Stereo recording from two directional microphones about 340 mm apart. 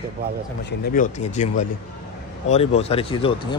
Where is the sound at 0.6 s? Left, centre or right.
Left.